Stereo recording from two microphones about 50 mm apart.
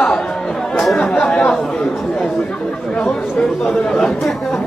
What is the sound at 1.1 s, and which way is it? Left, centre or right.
Chatter, centre.